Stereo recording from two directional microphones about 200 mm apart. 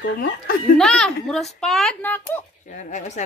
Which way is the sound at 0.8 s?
5° left (ahead or behind).